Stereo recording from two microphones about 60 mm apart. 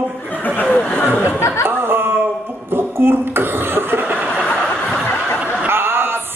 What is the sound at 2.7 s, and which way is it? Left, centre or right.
Chuckle, right.